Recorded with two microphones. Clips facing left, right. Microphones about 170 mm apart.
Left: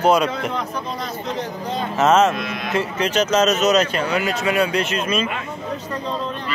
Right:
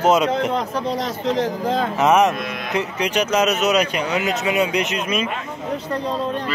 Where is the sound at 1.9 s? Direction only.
15° right (ahead or behind).